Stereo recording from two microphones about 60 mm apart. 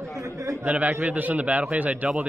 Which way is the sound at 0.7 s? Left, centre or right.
Right.